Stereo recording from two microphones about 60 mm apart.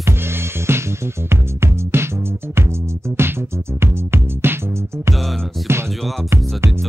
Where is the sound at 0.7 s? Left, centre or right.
Right.